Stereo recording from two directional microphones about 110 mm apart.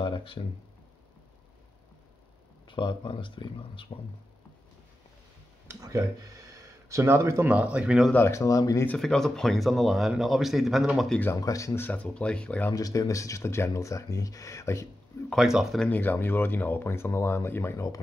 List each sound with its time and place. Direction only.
0.0 s a sound: 50° left (ahead or behind)
2.7 s speech: 45° left (ahead or behind)
5.7 s speech: 30° right (ahead or behind)
7.5 s speech: 10° right (ahead or behind)
8.1 s speech: 20° left (ahead or behind)
8.8 s speech: 5° left (ahead or behind)
11.4 s speech: 30° left (ahead or behind); by 12.7 s 15° left (ahead or behind)
12.7 s speech: 35° left (ahead or behind)
15.3 s speech: 5° right (ahead or behind)
15.8 s speech: 15° left (ahead or behind)